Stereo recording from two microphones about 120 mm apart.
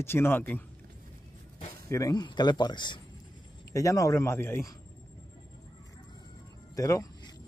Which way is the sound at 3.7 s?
25° left (ahead or behind).